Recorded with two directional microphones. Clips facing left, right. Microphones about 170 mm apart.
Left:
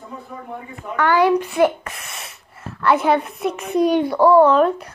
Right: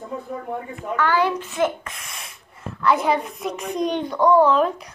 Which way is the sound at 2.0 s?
5° left (ahead or behind).